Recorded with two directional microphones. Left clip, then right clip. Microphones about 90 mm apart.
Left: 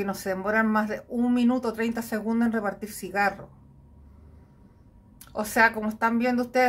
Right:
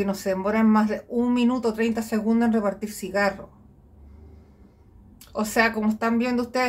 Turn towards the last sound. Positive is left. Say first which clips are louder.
# left 1 dB
turn(degrees=10)  # may be behind; listen again after turning